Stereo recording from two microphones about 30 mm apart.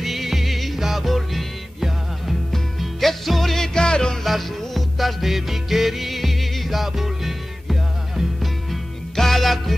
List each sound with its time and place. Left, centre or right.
0.0 s music: centre
2.5 s music: centre
3.5 s music: centre
4.2 s music: centre
9.1 s music: centre